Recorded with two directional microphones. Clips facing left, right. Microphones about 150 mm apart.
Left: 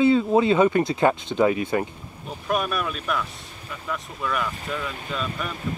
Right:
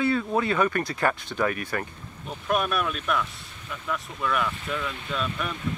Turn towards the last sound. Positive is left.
turn(degrees=0)  # may be behind; listen again after turning